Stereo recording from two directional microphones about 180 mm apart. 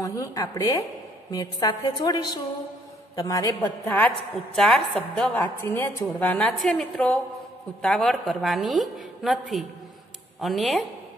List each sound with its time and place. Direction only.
0.0 s a woman's voice: 20° left (ahead or behind); by 10.9 s centre (ahead or behind)